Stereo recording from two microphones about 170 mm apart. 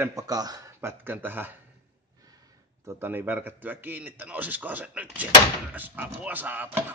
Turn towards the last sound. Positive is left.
turn(degrees=-10)  # may be behind; listen again after turning